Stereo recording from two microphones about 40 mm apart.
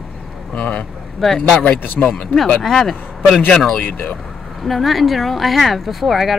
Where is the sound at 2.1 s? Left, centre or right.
Left.